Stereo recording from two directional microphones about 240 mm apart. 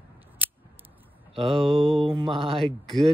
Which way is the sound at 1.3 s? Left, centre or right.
Right.